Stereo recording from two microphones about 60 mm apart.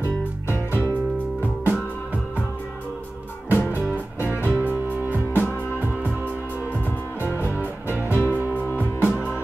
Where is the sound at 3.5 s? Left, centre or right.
Left.